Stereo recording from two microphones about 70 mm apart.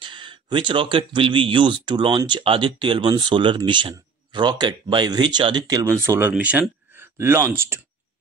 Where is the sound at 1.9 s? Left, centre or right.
Right.